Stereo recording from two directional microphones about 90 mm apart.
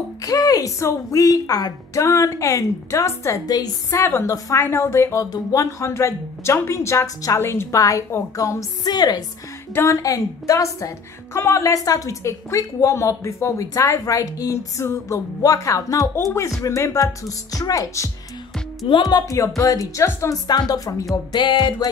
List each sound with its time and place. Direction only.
0.2 s speech: 40° left (ahead or behind)
3.9 s speech: 30° left (ahead or behind); by 9.2 s 50° left (ahead or behind)
9.8 s speech: 35° left (ahead or behind)
20.4 s speech: 50° left (ahead or behind)
21.1 s speech: 55° left (ahead or behind)